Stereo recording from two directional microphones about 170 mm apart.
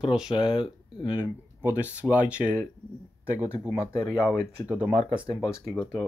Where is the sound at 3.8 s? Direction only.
15° left (ahead or behind).